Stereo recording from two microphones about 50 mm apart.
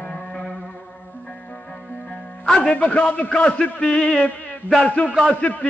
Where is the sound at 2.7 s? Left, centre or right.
Left.